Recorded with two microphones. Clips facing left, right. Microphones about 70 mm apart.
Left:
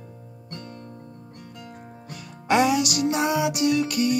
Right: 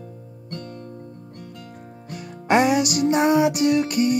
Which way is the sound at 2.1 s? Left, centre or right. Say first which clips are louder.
Right 2 dB; right.